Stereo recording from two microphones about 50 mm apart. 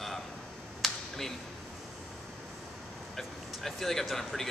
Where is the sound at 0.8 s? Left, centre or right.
Centre.